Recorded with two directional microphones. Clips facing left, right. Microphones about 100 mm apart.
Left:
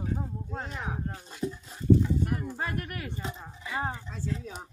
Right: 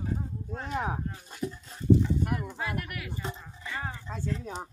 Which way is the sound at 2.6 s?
35° left (ahead or behind).